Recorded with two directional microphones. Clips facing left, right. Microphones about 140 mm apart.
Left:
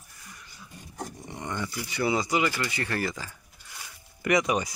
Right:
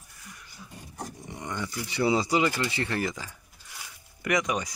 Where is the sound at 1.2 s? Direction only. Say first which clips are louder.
Left 1 dB; 10° right (ahead or behind).